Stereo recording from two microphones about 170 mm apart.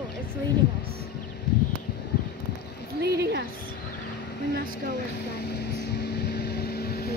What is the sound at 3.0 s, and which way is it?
Speech, 80° right.